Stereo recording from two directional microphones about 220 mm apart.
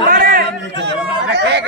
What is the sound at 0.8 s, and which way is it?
Speech, 50° right (ahead or behind).